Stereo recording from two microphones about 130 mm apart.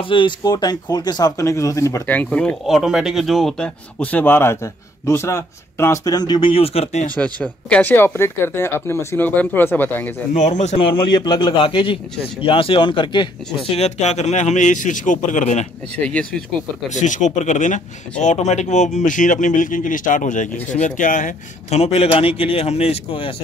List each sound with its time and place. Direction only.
0.1 s a man's voice: 35° left (ahead or behind)
2.2 s speech: 5° left (ahead or behind); by 6.5 s 35° left (ahead or behind)
6.5 s a man's voice: 50° left (ahead or behind)
7.2 s speech: 10° left (ahead or behind)
10.3 s speech: 65° left (ahead or behind)
10.8 s a man's voice: 40° left (ahead or behind)
13.7 s speech: 60° left (ahead or behind)
16.0 s speech: 10° left (ahead or behind)
16.9 s a man's voice: 70° left (ahead or behind); by 23.3 s 45° left (ahead or behind)